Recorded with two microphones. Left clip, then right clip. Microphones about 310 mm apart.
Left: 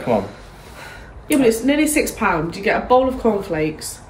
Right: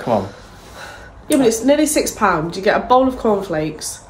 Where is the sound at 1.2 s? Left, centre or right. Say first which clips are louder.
Right 1 dB; centre.